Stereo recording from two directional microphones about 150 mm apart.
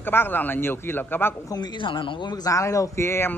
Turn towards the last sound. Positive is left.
turn(degrees=15)  # may be behind; listen again after turning